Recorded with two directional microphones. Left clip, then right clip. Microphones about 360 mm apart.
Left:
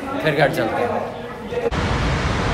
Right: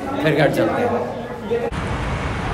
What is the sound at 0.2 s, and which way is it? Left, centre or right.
Speech, centre.